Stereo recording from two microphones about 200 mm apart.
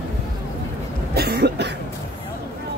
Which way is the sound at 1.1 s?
55° right (ahead or behind).